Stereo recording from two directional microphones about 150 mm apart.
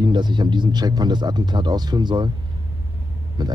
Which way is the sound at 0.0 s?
30° right (ahead or behind).